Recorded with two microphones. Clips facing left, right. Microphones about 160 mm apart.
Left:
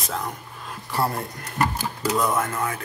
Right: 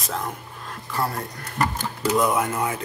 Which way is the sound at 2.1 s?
10° right (ahead or behind).